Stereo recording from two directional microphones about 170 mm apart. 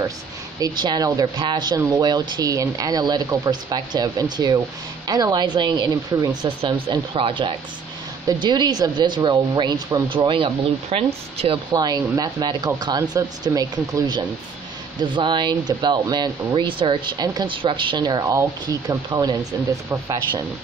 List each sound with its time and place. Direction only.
0.6 s speech: 25° right (ahead or behind)
11.7 s speech: 20° right (ahead or behind)